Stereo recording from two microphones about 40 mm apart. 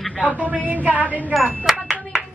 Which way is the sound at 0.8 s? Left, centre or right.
Right.